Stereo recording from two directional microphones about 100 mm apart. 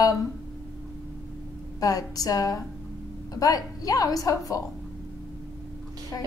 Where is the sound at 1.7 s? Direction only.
35° left (ahead or behind).